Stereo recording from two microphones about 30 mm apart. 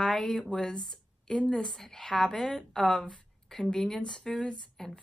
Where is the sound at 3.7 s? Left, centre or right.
Left.